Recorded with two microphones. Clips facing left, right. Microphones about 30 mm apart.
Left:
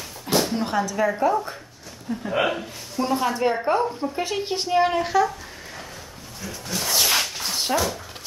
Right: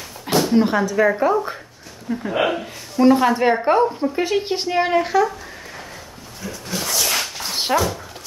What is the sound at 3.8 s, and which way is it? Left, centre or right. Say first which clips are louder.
Speech: right 6 dB; centre.